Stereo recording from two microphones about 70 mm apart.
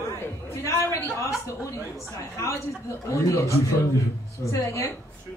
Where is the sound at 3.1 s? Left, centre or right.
Left.